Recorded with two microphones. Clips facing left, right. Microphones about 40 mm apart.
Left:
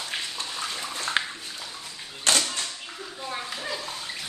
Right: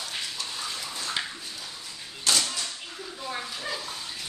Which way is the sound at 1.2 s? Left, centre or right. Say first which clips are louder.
Left 4 dB; left.